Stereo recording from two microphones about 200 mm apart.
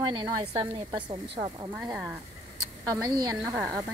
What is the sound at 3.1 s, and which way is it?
Speech, 20° right (ahead or behind).